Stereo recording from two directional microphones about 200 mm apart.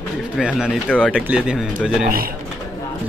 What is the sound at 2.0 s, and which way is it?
Speech, 45° right (ahead or behind).